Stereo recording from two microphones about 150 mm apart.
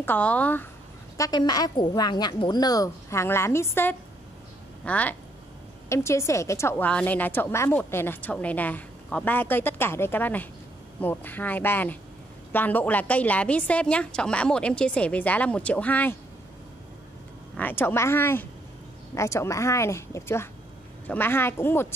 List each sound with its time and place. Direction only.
0.0 s a woman's voice: 10° left (ahead or behind)
1.1 s a woman's voice: 25° left (ahead or behind)
17.6 s a woman's voice: 15° left (ahead or behind)